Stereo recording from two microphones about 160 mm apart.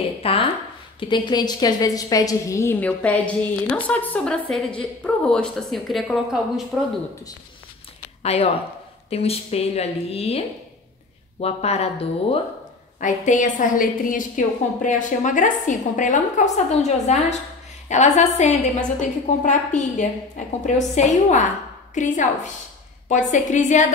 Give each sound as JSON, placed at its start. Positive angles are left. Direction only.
{"t": 0.2, "sound": "a woman's voice", "side_deg": 35}
{"t": 8.2, "sound": "a woman's voice", "side_deg": 40}
{"t": 13.0, "sound": "a woman's voice", "side_deg": 50}